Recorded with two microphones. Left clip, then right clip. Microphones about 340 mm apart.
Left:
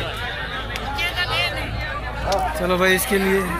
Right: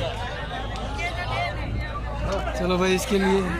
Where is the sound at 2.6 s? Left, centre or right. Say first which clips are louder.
Left 3 dB; centre.